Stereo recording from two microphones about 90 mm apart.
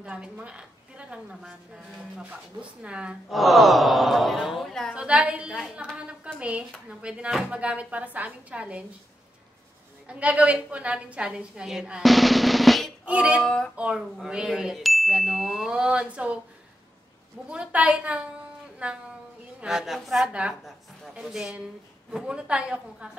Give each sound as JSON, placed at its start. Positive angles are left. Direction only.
{"t": 0.0, "sound": "a woman's voice", "side_deg": -15}
{"t": 3.3, "sound": "a sound", "side_deg": 0}
{"t": 4.9, "sound": "a woman's voice", "side_deg": -10}
{"t": 10.0, "sound": "a woman's voice", "side_deg": -15}
{"t": 13.0, "sound": "a woman's voice", "side_deg": -15}
{"t": 13.4, "sound": "a child's voice", "side_deg": 10}
{"t": 13.7, "sound": "a woman's voice", "side_deg": -10}
{"t": 14.1, "sound": "a sound", "side_deg": -5}
{"t": 17.5, "sound": "a woman's voice", "side_deg": -15}
{"t": 19.6, "sound": "a sound", "side_deg": -5}
{"t": 21.1, "sound": "a woman's voice", "side_deg": -5}